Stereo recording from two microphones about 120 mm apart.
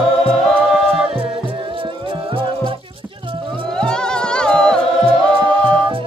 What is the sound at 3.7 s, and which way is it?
Music, 5° left (ahead or behind).